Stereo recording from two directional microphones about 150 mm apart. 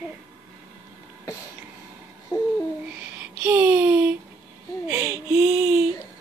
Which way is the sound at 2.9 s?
10° right (ahead or behind).